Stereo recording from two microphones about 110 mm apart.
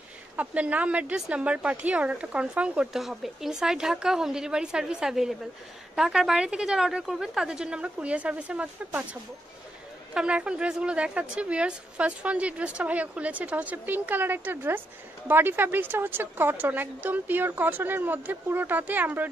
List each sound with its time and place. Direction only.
0.4 s a woman's voice: 15° right (ahead or behind)
10.1 s a woman's voice: 10° right (ahead or behind)